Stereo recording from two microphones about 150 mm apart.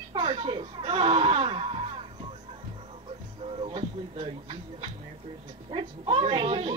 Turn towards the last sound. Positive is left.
turn(degrees=-35)  # may be behind; listen again after turning